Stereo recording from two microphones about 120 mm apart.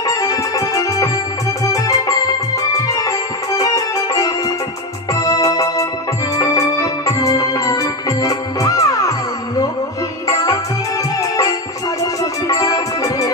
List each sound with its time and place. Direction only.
0.0 s music: 30° left (ahead or behind)
5.2 s organ: 30° left (ahead or behind)
6.3 s music: 25° left (ahead or behind)
10.2 s music: 30° left (ahead or behind)
12.0 s music: 30° left (ahead or behind)